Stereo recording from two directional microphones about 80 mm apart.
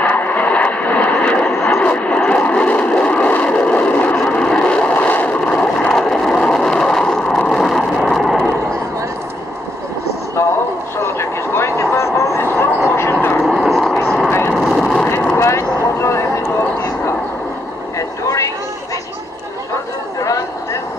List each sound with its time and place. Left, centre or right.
0.0 s vehicle: left
5.4 s vehicle: centre
11.0 s vehicle: left
13.4 s vehicle: centre
15.3 s vehicle: left
17.9 s vehicle: left
20.2 s a sound: left